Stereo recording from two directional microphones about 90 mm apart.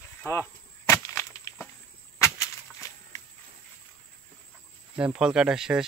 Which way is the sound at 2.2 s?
35° left (ahead or behind).